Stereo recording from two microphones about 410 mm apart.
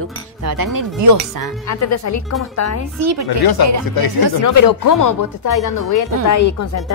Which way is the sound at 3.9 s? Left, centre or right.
Left.